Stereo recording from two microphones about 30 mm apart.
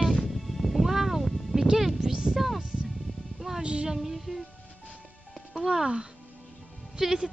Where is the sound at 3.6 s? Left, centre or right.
Right.